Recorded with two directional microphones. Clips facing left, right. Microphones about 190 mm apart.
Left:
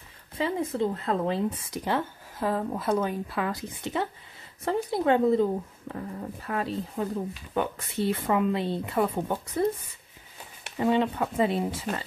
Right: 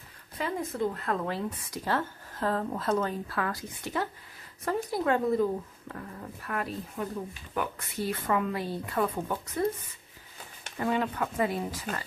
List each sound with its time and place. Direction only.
0.4 s speech: 25° left (ahead or behind)
10.8 s speech: 25° left (ahead or behind)